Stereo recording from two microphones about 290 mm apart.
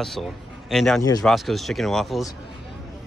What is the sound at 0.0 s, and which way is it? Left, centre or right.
A man's voice, centre.